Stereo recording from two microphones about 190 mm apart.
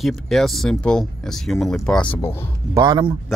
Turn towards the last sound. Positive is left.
turn(degrees=-20)  # may be behind; listen again after turning